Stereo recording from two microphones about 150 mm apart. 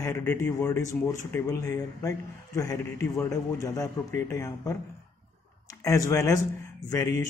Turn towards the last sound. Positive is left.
turn(degrees=20)  # may be behind; listen again after turning